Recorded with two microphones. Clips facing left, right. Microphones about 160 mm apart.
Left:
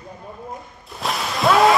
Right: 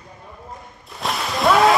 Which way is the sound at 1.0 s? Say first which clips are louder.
Even; centre (ahead or behind).